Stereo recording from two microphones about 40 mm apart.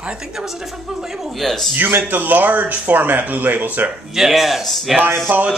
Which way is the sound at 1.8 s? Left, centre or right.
Right.